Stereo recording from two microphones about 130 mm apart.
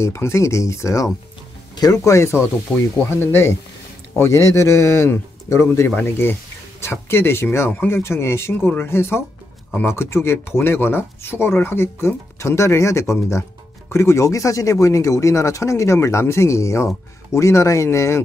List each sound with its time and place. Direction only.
0.0 s speech: 20° left (ahead or behind)